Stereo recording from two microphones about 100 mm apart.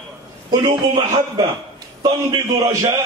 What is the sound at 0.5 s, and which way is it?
Speech, 45° right (ahead or behind).